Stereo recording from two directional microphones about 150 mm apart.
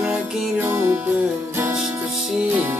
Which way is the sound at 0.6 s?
15° right (ahead or behind).